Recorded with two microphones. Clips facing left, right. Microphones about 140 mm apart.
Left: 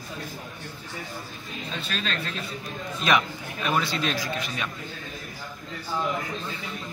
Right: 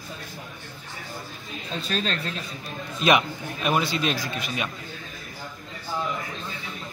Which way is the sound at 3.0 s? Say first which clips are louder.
Right 3 dB; 15° right (ahead or behind).